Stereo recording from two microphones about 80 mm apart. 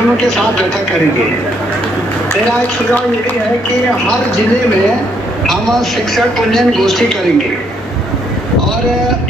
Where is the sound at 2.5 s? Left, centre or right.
Centre.